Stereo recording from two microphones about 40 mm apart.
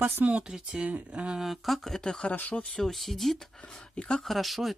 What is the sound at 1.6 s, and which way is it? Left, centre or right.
Speech, centre.